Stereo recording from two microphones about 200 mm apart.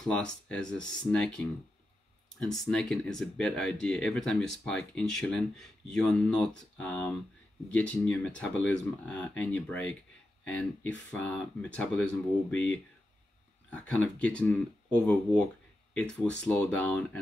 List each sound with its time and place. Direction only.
0.0 s speech: 5° left (ahead or behind)
13.7 s speech: 5° left (ahead or behind)
15.9 s speech: 5° left (ahead or behind)